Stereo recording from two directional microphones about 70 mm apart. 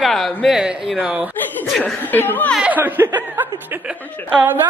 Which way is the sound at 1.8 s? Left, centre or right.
Left.